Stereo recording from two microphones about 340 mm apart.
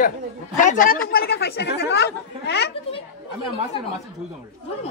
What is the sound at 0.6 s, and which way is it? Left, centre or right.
Speech, left.